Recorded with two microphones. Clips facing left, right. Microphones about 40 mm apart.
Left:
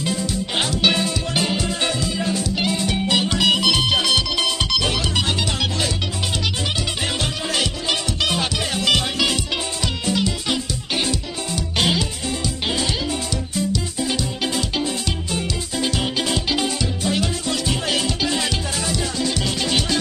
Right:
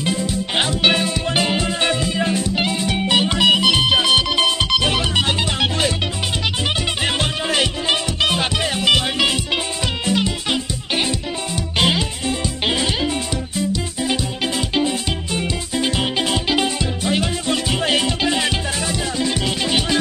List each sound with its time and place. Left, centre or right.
0.2 s music: right
7.2 s music: right